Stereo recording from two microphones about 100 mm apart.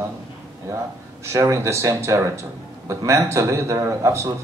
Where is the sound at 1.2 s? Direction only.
30° right (ahead or behind).